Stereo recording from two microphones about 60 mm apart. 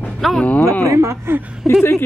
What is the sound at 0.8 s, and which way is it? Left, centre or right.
Speech, right.